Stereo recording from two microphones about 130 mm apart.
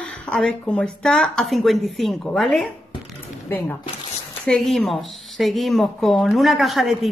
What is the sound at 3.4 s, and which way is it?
Speech, 15° left (ahead or behind).